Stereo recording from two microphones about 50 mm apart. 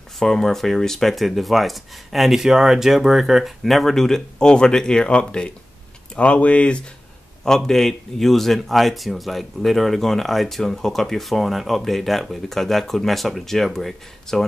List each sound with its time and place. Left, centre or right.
0.2 s a man's voice: centre; by 6.8 s left
7.4 s a man's voice: centre